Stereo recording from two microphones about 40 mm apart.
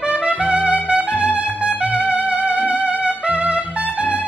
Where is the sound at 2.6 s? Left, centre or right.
Right.